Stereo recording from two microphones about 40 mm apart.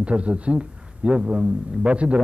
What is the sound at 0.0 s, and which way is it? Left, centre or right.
A man's voice, right.